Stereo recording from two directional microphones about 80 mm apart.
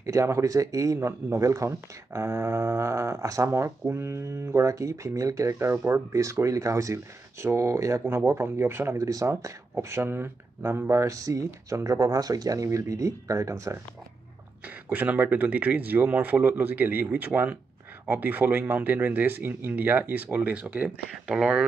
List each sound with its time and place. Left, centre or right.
0.0 s speech: right
8.9 s speech: right
14.9 s speech: right